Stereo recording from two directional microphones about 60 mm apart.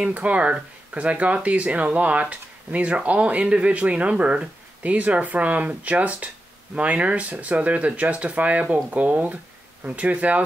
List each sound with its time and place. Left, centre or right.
0.1 s speech: right